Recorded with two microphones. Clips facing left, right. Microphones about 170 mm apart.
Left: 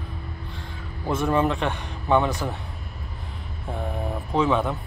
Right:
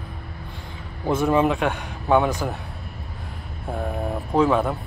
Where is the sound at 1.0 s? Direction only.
10° right (ahead or behind).